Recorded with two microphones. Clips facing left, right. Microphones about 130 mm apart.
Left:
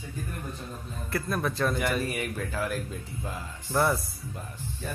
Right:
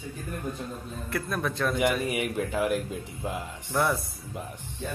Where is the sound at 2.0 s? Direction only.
15° right (ahead or behind).